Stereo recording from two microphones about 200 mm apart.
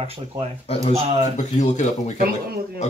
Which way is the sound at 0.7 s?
30° left (ahead or behind).